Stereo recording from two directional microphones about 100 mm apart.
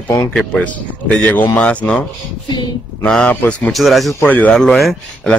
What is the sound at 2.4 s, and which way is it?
Speech, 50° left (ahead or behind).